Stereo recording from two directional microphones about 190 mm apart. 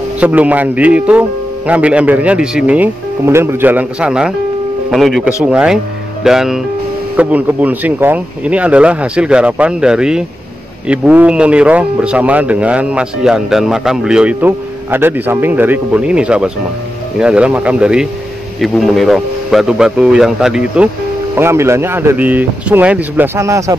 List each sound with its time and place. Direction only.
0.2 s a man's voice: 10° right (ahead or behind)